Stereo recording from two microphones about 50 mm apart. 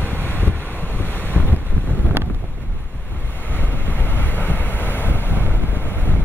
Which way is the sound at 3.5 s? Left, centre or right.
Left.